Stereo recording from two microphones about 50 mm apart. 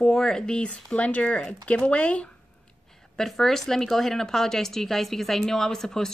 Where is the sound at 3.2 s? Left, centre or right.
Centre.